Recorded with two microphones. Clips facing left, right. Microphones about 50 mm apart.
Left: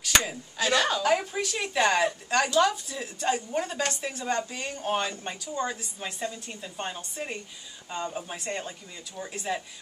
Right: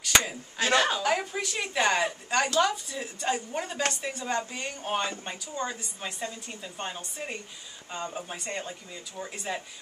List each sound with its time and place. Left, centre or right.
0.0 s chopping: centre
0.7 s a woman's voice: centre
1.0 s a woman's voice: centre